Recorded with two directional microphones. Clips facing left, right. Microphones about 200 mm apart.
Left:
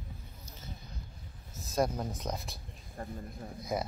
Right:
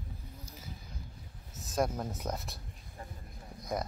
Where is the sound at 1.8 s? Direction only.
5° right (ahead or behind).